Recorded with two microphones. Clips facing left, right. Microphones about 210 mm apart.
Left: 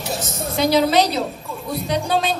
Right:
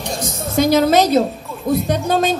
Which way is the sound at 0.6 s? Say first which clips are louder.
Right 3 dB; 45° right (ahead or behind).